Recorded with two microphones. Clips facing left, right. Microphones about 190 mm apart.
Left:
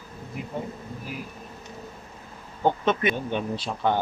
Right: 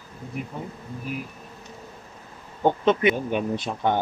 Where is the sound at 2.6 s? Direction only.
15° right (ahead or behind).